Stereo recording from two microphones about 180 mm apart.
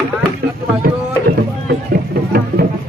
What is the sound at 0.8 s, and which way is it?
Music, 60° right (ahead or behind).